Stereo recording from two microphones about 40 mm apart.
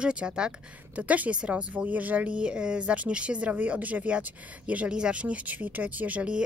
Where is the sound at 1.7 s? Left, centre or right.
Right.